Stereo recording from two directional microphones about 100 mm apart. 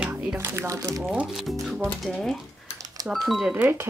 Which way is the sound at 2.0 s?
Centre (ahead or behind).